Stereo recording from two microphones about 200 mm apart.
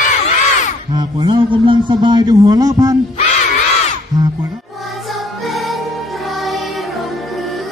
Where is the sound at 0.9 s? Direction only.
20° right (ahead or behind).